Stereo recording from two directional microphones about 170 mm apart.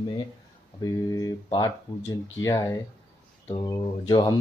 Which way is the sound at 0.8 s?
20° left (ahead or behind).